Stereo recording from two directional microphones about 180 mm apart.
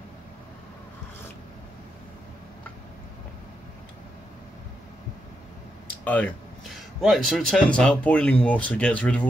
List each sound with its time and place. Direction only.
6.0 s speech: 10° left (ahead or behind)